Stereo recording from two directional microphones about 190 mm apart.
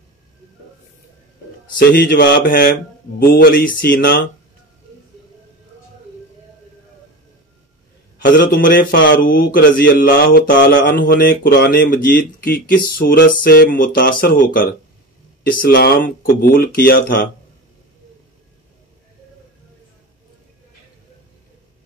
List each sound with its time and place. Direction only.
1.8 s a man's voice: 55° left (ahead or behind)
8.2 s a man's voice: 50° left (ahead or behind)